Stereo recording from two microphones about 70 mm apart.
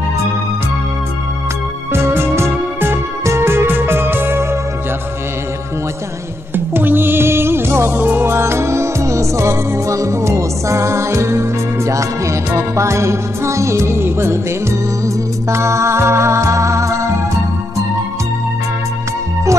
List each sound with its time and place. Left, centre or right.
1.9 s music: right
6.5 s music: right
15.5 s music: right